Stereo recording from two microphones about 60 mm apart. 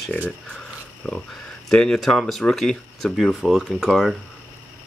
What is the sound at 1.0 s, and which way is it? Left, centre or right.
Speech, centre.